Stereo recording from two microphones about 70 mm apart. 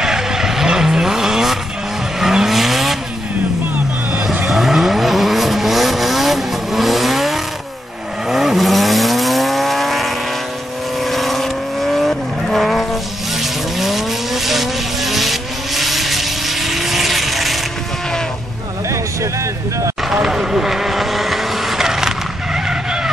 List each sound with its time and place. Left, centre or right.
0.0 s vehicle: centre
3.7 s vehicle: centre
4.5 s vehicle: centre
20.1 s vehicle: centre